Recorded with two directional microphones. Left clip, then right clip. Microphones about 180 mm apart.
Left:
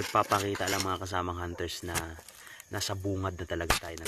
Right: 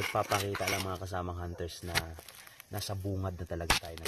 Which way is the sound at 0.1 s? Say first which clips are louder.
Left 9 dB; 20° left (ahead or behind).